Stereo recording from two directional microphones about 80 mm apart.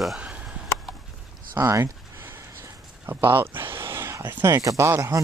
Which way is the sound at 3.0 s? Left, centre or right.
Right.